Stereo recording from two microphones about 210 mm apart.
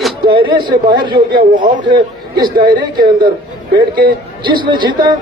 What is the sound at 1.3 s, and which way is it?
Speech, 45° right (ahead or behind).